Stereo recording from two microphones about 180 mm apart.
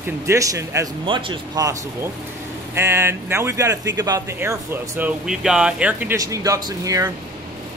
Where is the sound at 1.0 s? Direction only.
30° right (ahead or behind); by 6.1 s 10° right (ahead or behind).